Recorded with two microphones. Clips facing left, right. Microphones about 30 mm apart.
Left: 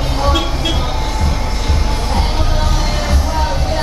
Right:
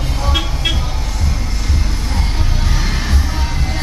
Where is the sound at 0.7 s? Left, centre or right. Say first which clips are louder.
Left 5 dB; left.